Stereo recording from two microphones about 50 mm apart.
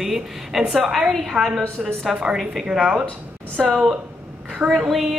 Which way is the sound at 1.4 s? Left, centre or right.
Right.